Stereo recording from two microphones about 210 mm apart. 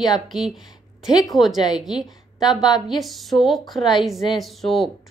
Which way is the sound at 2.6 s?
20° left (ahead or behind).